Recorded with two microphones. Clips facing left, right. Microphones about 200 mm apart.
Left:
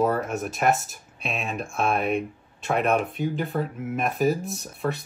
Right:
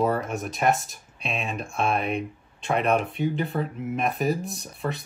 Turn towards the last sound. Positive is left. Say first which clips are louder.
# left 2 dB
turn(degrees=0)  # may be behind; listen again after turning